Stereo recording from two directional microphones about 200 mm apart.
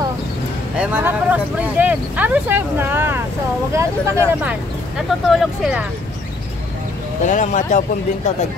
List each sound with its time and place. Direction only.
0.7 s speech: 5° right (ahead or behind)
7.2 s speech: 35° left (ahead or behind)